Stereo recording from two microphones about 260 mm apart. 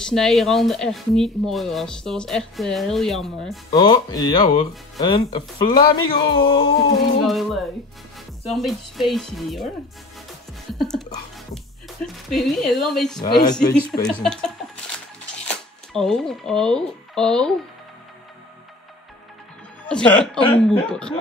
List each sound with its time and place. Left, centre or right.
0.0 s speech: centre
3.7 s speech: centre
7.2 s speech: centre
10.7 s speech: centre
12.3 s speech: centre
13.3 s speech: centre
14.0 s speech: centre
15.5 s speech: centre
19.9 s speech: centre